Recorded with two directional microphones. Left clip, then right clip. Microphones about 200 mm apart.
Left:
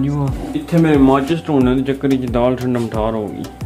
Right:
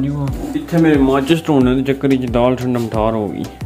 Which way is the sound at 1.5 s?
5° right (ahead or behind).